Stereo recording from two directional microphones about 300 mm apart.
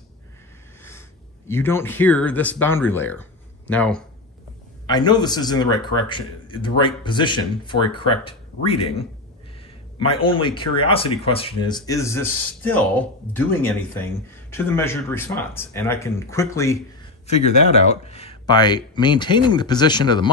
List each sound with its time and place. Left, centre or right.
1.5 s speech: centre
18.0 s speech: centre